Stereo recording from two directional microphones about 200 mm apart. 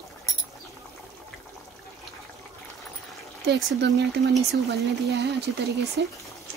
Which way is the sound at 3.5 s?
65° right (ahead or behind).